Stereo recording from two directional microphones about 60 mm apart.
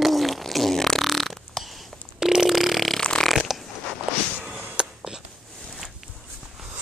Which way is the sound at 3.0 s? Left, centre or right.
Centre.